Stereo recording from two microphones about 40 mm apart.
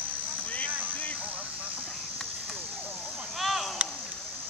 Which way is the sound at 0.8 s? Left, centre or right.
Left.